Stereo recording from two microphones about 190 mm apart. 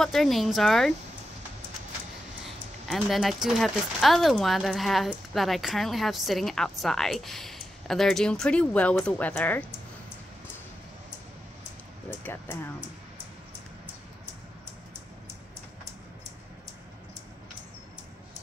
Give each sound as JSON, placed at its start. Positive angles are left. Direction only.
{"t": 0.0, "sound": "speech", "side_deg": 0}
{"t": 2.4, "sound": "speech", "side_deg": 0}
{"t": 12.2, "sound": "speech", "side_deg": 10}